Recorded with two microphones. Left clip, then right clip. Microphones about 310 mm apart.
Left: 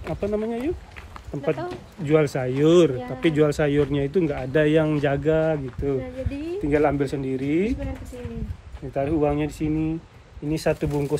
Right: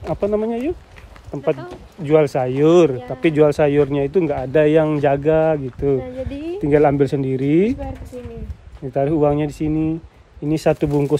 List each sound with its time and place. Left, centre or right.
0.1 s speech: right
8.9 s speech: right